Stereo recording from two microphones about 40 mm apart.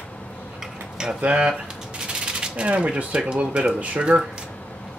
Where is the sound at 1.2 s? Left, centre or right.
Right.